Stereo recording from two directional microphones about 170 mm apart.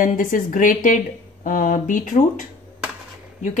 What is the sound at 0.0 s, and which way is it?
Speech, 55° left (ahead or behind).